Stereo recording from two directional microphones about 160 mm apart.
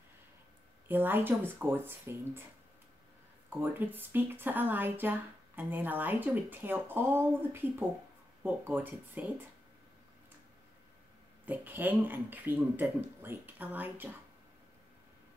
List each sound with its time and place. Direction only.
0.8 s speech: 10° right (ahead or behind)
3.4 s speech: 10° right (ahead or behind)
11.4 s speech: 10° right (ahead or behind)